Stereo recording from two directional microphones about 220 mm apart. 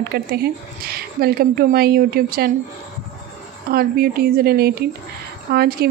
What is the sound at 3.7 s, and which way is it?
A woman's voice, 45° right (ahead or behind).